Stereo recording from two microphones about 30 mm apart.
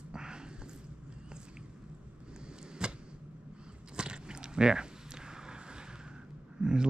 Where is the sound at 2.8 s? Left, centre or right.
Right.